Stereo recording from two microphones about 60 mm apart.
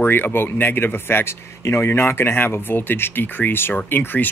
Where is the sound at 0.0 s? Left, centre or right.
Left.